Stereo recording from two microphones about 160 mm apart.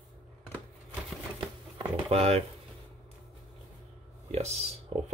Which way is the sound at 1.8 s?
40° right (ahead or behind).